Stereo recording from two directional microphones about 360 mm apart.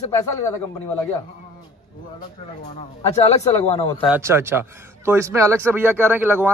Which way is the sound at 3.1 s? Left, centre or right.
Centre.